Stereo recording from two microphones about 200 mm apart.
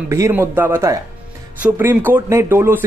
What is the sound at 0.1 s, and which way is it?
Speech, 15° right (ahead or behind).